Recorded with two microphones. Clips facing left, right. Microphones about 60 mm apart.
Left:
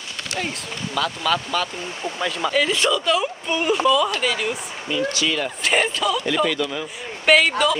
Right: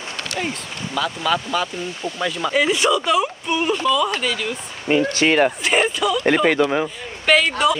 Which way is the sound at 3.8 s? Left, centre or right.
Centre.